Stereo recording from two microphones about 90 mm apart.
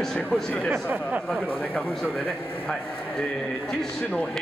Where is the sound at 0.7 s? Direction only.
15° right (ahead or behind).